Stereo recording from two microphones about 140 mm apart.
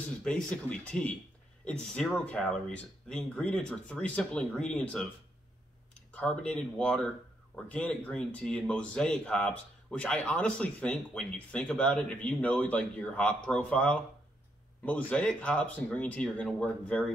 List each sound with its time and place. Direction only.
0.2 s a man's voice: 5° left (ahead or behind)
6.1 s a man's voice: 10° left (ahead or behind)